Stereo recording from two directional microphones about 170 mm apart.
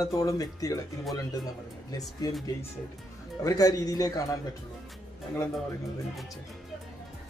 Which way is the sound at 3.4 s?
20° left (ahead or behind).